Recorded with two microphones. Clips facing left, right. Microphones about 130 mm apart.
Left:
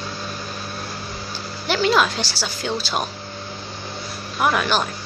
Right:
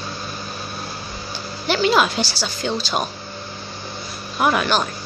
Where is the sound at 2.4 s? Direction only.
5° left (ahead or behind).